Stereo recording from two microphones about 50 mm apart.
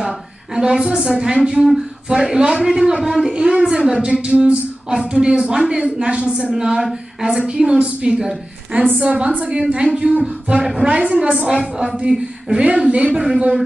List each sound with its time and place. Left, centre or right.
0.6 s a woman's voice: centre
4.1 s a sound: right
4.9 s a woman's voice: centre
8.7 s a woman's voice: right
9.5 s a woman's voice: centre